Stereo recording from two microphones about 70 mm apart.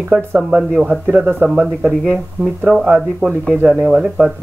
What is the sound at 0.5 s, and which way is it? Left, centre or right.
A man's voice, centre.